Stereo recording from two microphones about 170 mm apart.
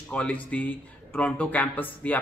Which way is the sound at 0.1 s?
10° left (ahead or behind).